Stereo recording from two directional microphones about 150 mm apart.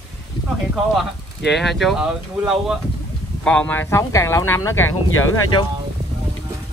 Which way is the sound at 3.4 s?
5° left (ahead or behind).